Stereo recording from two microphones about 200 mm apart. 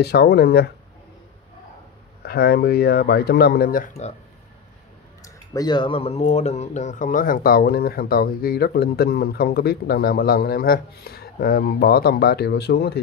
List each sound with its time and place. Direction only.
0.0 s speech: 55° left (ahead or behind)
2.2 s speech: 50° left (ahead or behind)
5.2 s speech: 20° left (ahead or behind); by 13.0 s 55° left (ahead or behind)